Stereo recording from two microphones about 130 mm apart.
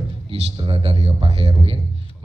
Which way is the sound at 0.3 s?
45° right (ahead or behind).